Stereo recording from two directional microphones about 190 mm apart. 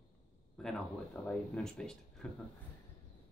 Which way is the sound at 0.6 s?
5° left (ahead or behind).